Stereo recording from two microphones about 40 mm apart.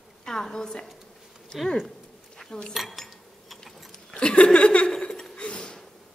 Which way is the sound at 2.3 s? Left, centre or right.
Centre.